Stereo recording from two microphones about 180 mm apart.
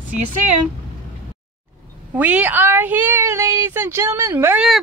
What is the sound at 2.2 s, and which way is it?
A woman's voice, 10° right (ahead or behind).